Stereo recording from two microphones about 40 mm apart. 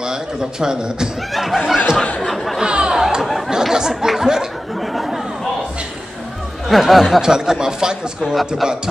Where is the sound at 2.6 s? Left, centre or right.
Centre.